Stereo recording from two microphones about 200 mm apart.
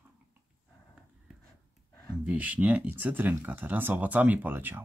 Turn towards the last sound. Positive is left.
turn(degrees=-10)  # may be behind; listen again after turning